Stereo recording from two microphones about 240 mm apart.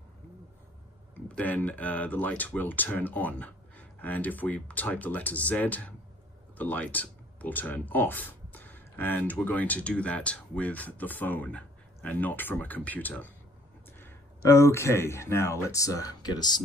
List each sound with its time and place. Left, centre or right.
1.3 s speech: centre